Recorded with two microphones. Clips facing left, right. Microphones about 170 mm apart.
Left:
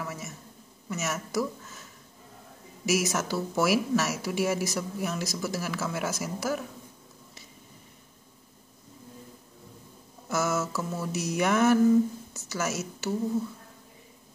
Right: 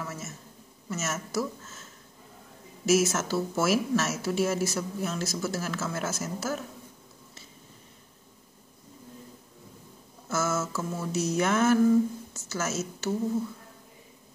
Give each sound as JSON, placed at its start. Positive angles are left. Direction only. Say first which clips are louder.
{"t": 0.0, "sound": "a sound", "louder": "left 1 dB", "side_deg": 15}
{"t": 0.8, "sound": "speech", "louder": "left 1 dB", "side_deg": 15}
{"t": 10.2, "sound": "speech", "louder": "left 1 dB", "side_deg": 15}